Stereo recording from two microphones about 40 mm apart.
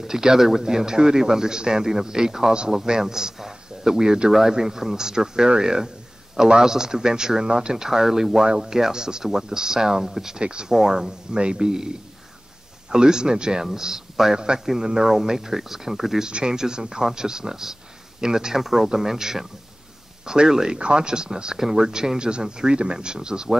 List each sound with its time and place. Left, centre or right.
0.0 s a man's voice: centre
10.4 s speech: right
10.7 s a man's voice: centre
16.3 s a man's voice: right